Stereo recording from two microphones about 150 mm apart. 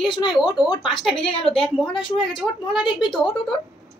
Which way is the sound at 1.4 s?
5° left (ahead or behind).